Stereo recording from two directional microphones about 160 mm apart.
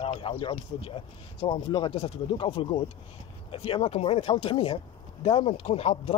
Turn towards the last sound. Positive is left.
turn(degrees=40)  # may be behind; listen again after turning